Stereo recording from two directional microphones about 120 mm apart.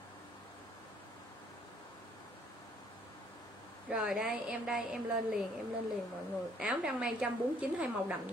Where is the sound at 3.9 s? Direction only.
5° right (ahead or behind).